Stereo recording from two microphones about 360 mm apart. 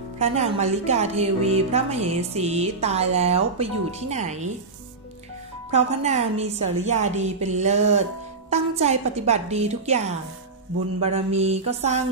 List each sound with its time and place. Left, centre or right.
0.2 s a woman's voice: centre
5.7 s a woman's voice: centre